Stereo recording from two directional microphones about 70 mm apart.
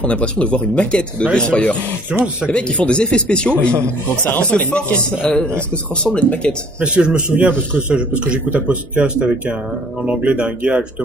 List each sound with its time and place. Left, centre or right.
0.0 s speech: centre
2.1 s speech: centre
2.5 s speech: centre
4.2 s speech: left
4.5 s speech: centre
7.1 s a man's voice: right